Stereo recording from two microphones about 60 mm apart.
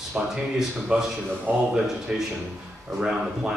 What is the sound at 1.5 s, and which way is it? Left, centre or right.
Speech, right.